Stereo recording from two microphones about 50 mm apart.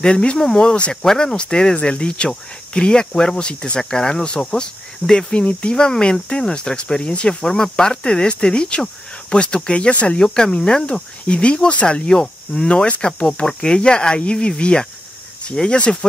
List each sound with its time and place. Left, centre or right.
0.0 s speech: centre